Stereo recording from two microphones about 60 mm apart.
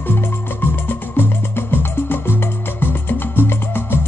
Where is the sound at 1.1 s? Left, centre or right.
Left.